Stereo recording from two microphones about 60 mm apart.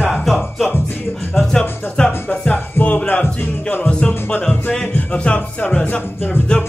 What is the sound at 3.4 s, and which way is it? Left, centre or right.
Music, left.